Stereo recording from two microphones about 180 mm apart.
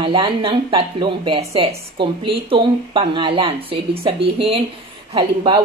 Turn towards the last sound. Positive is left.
turn(degrees=-25)  # may be behind; listen again after turning